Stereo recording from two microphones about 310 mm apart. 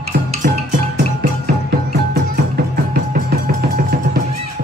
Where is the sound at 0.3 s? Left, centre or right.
Right.